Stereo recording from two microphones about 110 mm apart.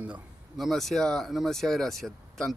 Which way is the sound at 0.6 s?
Centre (ahead or behind).